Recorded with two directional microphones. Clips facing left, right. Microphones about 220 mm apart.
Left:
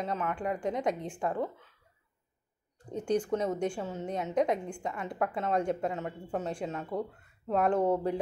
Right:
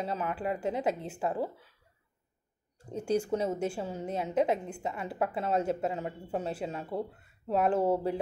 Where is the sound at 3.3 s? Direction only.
30° right (ahead or behind).